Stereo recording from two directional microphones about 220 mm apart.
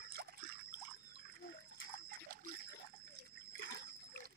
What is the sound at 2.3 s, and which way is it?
Water, 40° right (ahead or behind).